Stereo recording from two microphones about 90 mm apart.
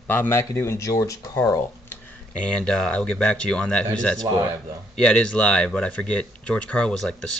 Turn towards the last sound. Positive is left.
turn(degrees=5)  # may be behind; listen again after turning